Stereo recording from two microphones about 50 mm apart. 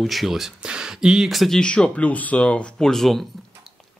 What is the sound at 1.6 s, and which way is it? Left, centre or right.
Speech, left.